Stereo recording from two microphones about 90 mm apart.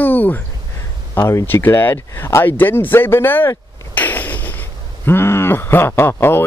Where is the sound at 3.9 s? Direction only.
20° left (ahead or behind).